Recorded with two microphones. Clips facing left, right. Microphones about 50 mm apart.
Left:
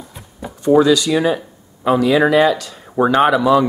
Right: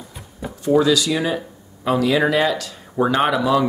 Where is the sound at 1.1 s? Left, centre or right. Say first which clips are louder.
Left 5 dB; centre.